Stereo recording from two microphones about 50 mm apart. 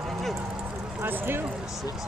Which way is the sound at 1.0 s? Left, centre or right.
Right.